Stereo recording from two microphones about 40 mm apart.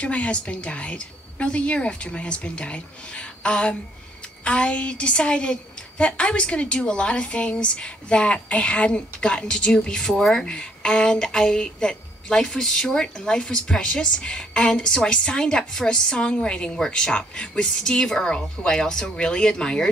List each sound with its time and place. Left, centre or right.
0.0 s a woman's voice: left
10.1 s speech: centre
10.4 s a woman's voice: left